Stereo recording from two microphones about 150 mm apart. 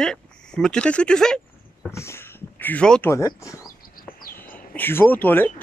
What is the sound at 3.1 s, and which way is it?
Speech, 20° left (ahead or behind).